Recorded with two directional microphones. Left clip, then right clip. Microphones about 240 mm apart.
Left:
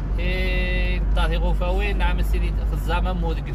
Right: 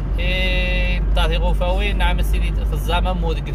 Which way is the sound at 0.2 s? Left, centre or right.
Centre.